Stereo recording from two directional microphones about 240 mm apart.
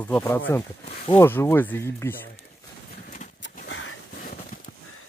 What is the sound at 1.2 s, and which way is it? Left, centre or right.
Speech, centre.